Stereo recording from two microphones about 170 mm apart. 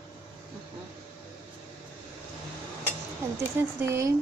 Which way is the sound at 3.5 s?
15° right (ahead or behind).